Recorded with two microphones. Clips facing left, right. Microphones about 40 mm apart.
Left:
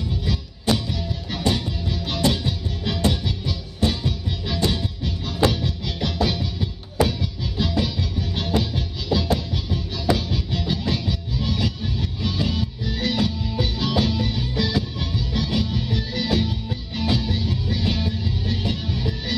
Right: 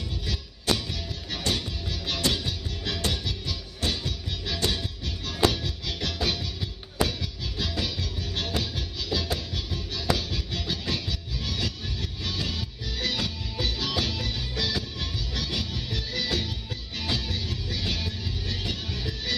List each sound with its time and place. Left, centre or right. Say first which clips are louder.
0.2 s music: left 7 dB; centre